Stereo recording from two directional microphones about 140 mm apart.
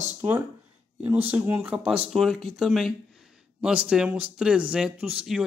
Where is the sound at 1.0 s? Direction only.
15° right (ahead or behind).